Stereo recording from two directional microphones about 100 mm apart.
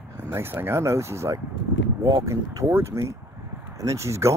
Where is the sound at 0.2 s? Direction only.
25° right (ahead or behind).